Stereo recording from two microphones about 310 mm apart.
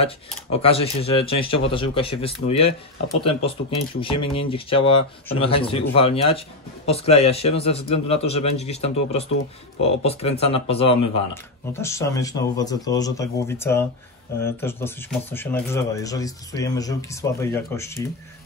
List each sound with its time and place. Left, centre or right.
0.0 s a man's voice: centre